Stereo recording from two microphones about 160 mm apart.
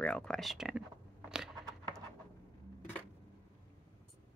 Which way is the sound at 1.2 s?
5° right (ahead or behind).